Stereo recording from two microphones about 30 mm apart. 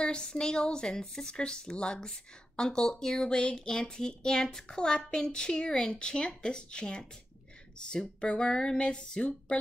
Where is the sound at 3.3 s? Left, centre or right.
Left.